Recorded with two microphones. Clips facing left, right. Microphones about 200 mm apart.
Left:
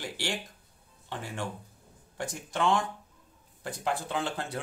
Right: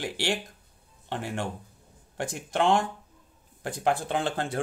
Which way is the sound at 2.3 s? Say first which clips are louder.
Right 4 dB; 60° right (ahead or behind).